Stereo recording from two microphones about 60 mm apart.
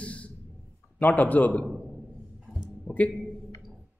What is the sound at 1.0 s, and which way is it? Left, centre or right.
Speech, left.